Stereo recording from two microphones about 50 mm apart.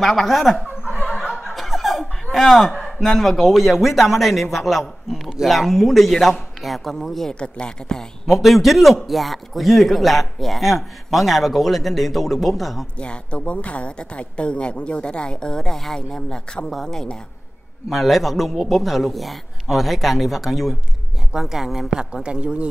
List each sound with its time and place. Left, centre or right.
0.0 s a man's voice: centre
7.3 s speech: centre
8.3 s a man's voice: centre
13.0 s a woman's voice: left
17.8 s a man's voice: centre; by 22.7 s right